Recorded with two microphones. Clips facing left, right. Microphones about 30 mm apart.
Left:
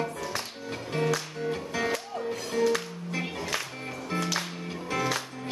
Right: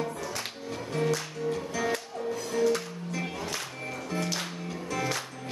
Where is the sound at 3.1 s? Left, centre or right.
Left.